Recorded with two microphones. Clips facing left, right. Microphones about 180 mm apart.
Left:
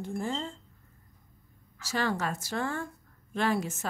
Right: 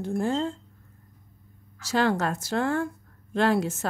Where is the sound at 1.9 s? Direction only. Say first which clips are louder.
Right 6 dB; 75° right (ahead or behind).